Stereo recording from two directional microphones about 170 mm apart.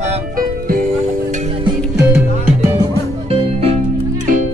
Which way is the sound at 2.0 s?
15° right (ahead or behind).